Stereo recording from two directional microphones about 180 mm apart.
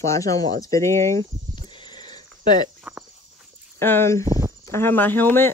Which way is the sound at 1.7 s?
25° left (ahead or behind).